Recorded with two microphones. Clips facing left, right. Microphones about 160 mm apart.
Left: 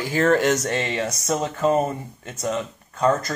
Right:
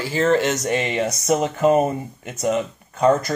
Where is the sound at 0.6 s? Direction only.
15° right (ahead or behind).